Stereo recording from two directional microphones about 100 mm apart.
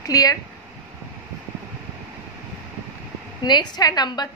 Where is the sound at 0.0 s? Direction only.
35° left (ahead or behind).